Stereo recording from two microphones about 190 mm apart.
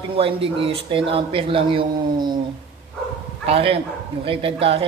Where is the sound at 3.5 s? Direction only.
30° right (ahead or behind).